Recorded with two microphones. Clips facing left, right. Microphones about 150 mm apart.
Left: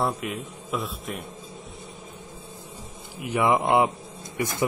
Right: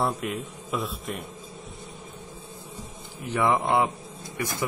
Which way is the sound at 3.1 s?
10° left (ahead or behind).